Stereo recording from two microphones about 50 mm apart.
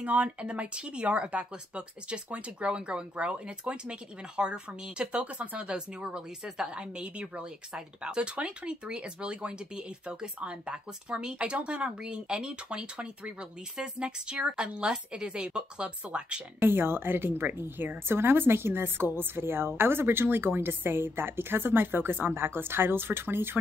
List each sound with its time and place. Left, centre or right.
0.0 s speech: right
16.6 s a woman's voice: right